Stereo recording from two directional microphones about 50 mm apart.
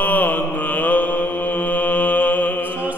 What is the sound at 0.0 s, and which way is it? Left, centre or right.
Mantra, left.